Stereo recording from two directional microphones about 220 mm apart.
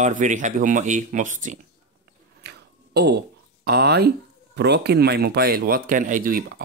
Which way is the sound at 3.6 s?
50° right (ahead or behind).